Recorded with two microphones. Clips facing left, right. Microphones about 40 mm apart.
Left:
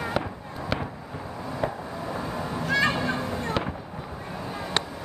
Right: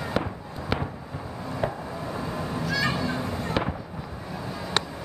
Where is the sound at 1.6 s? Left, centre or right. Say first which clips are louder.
Even; centre.